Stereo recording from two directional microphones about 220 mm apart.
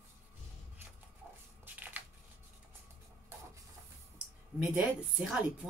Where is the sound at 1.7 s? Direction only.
10° right (ahead or behind).